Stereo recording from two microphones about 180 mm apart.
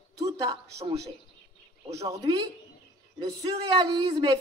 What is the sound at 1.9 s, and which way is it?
Speech, 20° right (ahead or behind).